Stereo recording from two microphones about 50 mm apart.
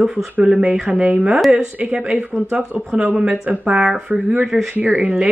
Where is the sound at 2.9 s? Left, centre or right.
Right.